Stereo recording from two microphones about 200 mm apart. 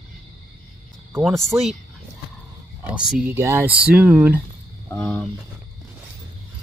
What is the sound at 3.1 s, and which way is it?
Speech, 10° right (ahead or behind).